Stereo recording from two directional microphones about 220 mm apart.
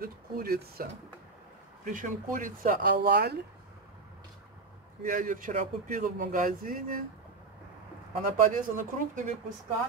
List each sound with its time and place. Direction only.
0.0 s speech: 45° right (ahead or behind)
1.9 s speech: 35° right (ahead or behind)
5.0 s speech: 40° right (ahead or behind)
8.2 s speech: 35° right (ahead or behind)